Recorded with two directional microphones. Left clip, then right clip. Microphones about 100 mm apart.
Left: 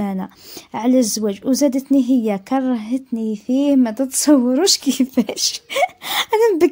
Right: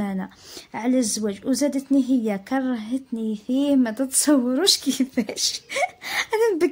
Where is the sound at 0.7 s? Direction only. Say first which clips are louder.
Left 6 dB; 35° left (ahead or behind).